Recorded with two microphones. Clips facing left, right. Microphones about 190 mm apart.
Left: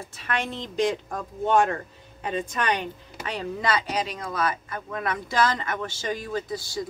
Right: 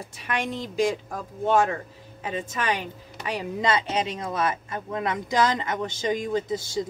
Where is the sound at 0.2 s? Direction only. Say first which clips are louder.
Right 1 dB; 15° right (ahead or behind).